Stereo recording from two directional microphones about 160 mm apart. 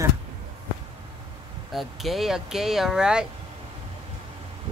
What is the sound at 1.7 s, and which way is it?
Speech, centre (ahead or behind).